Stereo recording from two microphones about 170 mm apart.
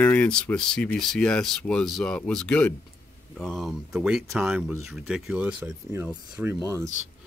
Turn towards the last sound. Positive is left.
turn(degrees=-15)  # may be behind; listen again after turning